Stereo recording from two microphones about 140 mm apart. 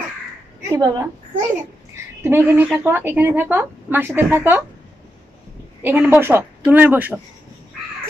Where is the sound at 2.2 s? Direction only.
15° right (ahead or behind).